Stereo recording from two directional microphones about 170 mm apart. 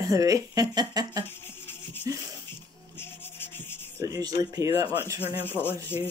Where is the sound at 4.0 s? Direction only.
20° right (ahead or behind).